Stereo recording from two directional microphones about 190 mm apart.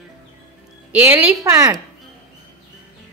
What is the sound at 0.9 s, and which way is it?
Speech, 5° right (ahead or behind).